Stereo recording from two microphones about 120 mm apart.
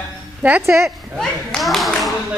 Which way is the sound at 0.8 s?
Centre (ahead or behind).